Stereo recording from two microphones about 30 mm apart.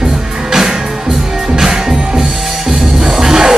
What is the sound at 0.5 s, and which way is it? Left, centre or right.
Music, centre.